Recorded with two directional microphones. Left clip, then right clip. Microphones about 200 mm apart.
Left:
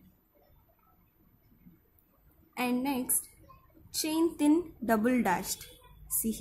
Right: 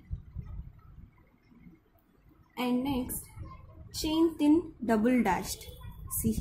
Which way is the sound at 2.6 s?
20° left (ahead or behind).